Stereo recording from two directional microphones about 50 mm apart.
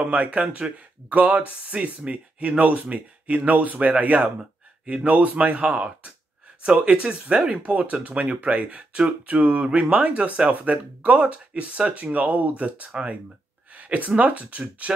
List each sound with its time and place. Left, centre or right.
0.0 s speech: right